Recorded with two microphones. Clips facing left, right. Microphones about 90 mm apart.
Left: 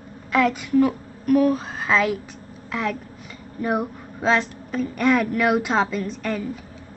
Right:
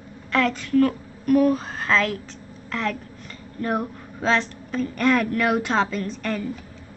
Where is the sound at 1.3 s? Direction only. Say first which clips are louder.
Even; centre (ahead or behind).